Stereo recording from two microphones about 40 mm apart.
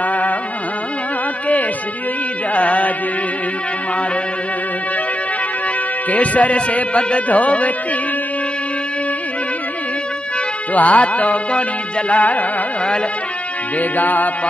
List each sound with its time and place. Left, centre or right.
0.0 s music: left
2.5 s speech: left
6.0 s speech: left
10.7 s speech: left
13.7 s music: left